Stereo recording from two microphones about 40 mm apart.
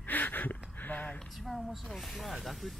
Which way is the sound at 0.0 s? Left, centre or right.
Left.